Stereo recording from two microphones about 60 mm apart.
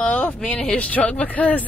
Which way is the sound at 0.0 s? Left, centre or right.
Left.